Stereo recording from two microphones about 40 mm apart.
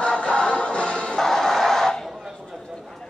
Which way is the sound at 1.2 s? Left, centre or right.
Centre.